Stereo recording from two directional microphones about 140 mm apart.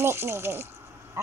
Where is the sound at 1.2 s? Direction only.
20° right (ahead or behind).